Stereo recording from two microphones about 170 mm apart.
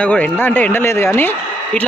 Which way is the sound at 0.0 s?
5° left (ahead or behind).